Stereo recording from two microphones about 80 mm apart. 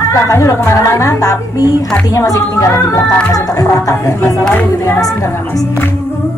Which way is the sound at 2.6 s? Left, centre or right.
Left.